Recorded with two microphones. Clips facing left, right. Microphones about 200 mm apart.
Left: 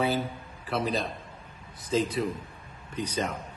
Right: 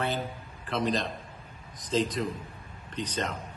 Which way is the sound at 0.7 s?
10° left (ahead or behind).